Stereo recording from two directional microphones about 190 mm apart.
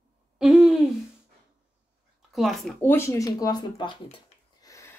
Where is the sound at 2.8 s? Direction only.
10° left (ahead or behind).